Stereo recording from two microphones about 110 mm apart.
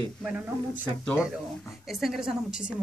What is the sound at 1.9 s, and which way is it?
Speech, centre (ahead or behind).